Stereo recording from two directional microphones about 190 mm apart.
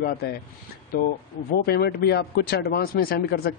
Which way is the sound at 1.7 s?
55° left (ahead or behind).